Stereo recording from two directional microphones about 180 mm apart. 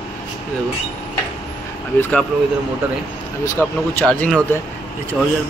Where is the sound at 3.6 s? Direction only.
10° left (ahead or behind).